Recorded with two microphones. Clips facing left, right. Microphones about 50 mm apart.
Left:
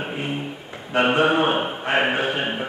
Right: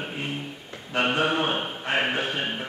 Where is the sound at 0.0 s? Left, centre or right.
Centre.